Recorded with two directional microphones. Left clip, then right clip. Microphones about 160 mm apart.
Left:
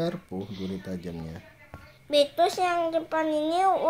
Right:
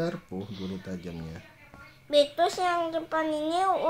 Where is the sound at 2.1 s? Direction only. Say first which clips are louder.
Left 1 dB; 30° left (ahead or behind).